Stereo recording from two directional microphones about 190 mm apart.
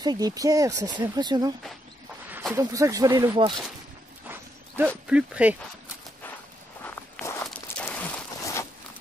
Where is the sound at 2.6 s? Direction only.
15° right (ahead or behind).